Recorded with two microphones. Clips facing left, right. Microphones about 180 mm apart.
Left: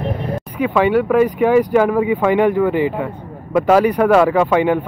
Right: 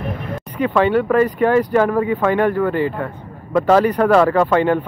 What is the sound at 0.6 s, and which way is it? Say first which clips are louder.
Speech: left 1 dB; 10° left (ahead or behind).